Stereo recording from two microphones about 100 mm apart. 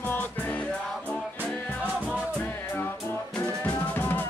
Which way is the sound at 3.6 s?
20° left (ahead or behind).